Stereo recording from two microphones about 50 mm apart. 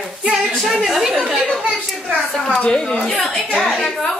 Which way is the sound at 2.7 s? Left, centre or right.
Centre.